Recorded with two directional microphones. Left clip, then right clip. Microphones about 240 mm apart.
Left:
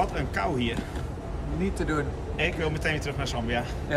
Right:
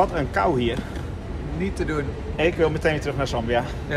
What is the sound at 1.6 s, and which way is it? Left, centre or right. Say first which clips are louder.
Speech: right 2 dB; centre.